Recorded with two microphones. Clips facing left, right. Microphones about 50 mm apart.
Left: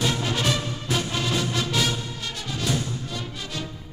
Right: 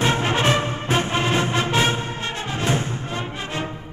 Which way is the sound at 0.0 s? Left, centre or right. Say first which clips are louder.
Right 5 dB; right.